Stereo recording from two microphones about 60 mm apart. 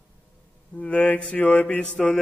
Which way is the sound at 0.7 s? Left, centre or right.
Left.